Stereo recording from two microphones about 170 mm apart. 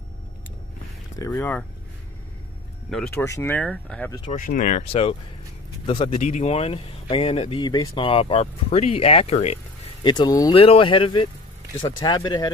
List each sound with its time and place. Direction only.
1.2 s speech: 10° left (ahead or behind)
2.9 s speech: 5° left (ahead or behind)
3.3 s speech: 15° left (ahead or behind)
4.3 s speech: 50° left (ahead or behind)
5.9 s speech: 30° left (ahead or behind)
6.1 s speech: 45° left (ahead or behind)
10.0 s speech: 25° left (ahead or behind)